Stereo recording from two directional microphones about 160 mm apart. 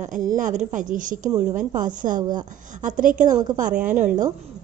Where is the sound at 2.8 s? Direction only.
55° right (ahead or behind).